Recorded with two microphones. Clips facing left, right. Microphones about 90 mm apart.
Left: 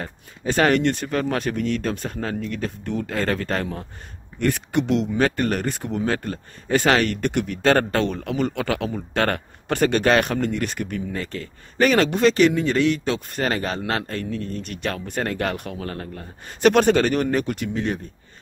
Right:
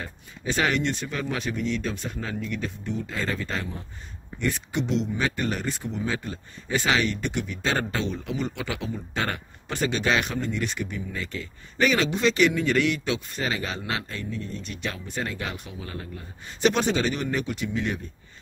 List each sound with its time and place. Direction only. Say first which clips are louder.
0.0 s speech: left 5 dB; 45° left (ahead or behind)